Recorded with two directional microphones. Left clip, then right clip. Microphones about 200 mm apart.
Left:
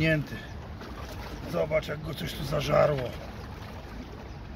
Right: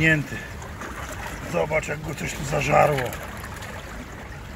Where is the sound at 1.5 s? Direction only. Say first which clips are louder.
Right 4 dB; 10° right (ahead or behind).